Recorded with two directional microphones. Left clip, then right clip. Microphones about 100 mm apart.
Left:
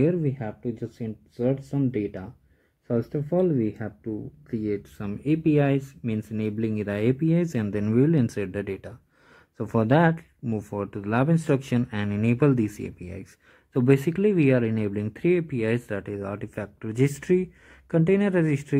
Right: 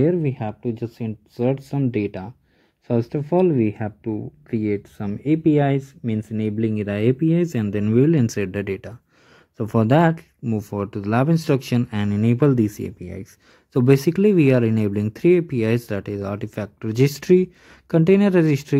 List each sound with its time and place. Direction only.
0.0 s speech: 15° right (ahead or behind)
0.4 s speech: 30° right (ahead or behind)
3.3 s speech: 30° right (ahead or behind)
4.9 s speech: 10° right (ahead or behind)
10.4 s speech: 10° right (ahead or behind)
10.8 s speech: 25° right (ahead or behind)
13.7 s speech: 35° right (ahead or behind)
16.0 s speech: 15° right (ahead or behind)
16.9 s speech: 45° right (ahead or behind)